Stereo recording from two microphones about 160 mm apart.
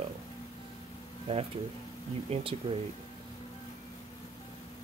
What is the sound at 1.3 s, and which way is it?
Speech, 35° right (ahead or behind).